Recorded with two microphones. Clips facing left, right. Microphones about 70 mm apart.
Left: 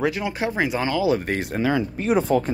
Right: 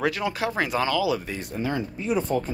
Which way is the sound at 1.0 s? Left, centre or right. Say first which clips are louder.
Left 4 dB; left.